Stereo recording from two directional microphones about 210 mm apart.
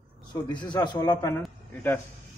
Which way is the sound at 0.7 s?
20° left (ahead or behind).